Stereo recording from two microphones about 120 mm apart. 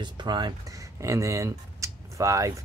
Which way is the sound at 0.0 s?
40° right (ahead or behind).